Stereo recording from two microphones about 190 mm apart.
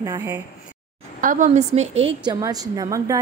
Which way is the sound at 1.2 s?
45° right (ahead or behind).